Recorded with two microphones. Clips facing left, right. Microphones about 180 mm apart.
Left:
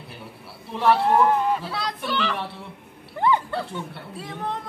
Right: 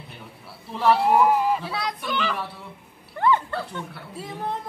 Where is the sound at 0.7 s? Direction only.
Centre (ahead or behind).